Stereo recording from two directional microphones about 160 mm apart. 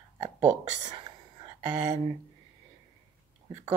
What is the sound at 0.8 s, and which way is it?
Whispering, 30° right (ahead or behind).